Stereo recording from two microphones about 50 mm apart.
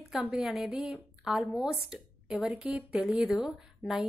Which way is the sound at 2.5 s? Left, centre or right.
Right.